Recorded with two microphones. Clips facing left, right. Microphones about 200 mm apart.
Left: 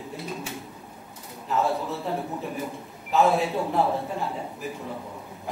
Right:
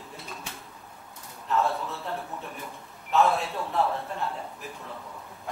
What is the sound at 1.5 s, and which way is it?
A man's voice, centre (ahead or behind).